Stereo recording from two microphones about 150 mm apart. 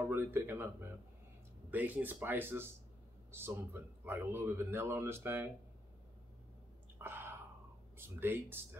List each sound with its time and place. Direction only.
0.0 s speech: 15° right (ahead or behind)
7.0 s whispering: 15° right (ahead or behind)
8.0 s speech: 15° right (ahead or behind)